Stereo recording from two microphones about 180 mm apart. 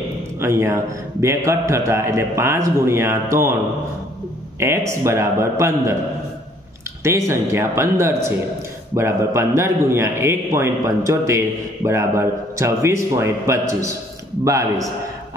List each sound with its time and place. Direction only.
0.4 s a man's voice: 15° right (ahead or behind)
4.6 s a man's voice: 15° right (ahead or behind)
7.0 s a man's voice: 15° right (ahead or behind)